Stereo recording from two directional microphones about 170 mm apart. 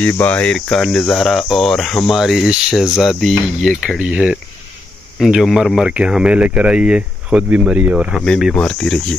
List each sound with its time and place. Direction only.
0.0 s cricket: 10° left (ahead or behind)